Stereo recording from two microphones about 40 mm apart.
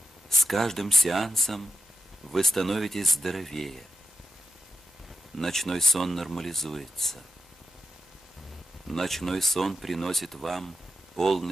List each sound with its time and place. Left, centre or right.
0.4 s speech: centre
5.4 s speech: centre
8.8 s speech: centre